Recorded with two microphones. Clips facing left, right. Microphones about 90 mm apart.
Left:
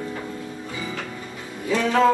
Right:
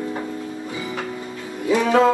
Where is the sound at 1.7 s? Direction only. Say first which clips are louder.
Right 3 dB; 15° right (ahead or behind).